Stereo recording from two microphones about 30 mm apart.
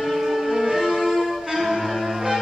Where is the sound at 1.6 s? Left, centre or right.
Centre.